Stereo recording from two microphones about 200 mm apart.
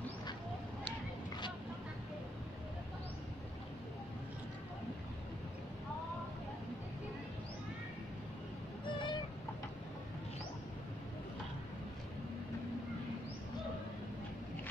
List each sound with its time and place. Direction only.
8.8 s cat: 25° left (ahead or behind)